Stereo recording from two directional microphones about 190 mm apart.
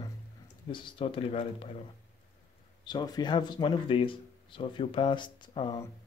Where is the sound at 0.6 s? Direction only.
25° left (ahead or behind).